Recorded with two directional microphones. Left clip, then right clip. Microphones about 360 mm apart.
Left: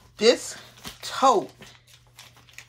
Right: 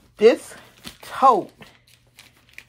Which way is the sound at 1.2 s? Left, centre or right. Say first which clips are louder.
Right 4 dB; centre.